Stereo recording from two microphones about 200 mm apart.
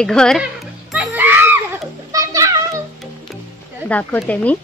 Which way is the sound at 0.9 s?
10° right (ahead or behind).